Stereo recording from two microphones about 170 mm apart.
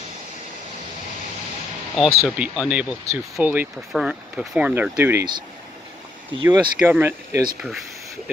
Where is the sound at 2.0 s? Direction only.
5° right (ahead or behind).